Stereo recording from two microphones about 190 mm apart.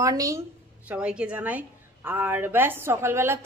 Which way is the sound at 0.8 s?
5° right (ahead or behind).